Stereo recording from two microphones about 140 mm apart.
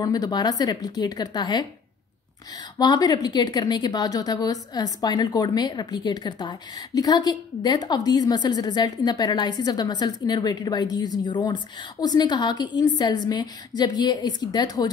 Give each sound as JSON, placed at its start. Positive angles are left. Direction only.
{"t": 0.0, "sound": "a woman's voice", "side_deg": 30}
{"t": 2.8, "sound": "a woman's voice", "side_deg": 30}